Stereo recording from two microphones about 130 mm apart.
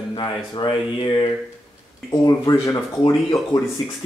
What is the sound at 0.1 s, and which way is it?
Speech, 35° left (ahead or behind).